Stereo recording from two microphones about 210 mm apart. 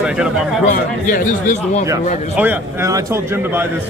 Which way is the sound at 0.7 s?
40° left (ahead or behind).